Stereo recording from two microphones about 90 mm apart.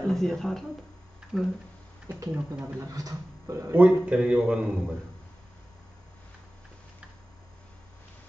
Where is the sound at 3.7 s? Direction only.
10° right (ahead or behind).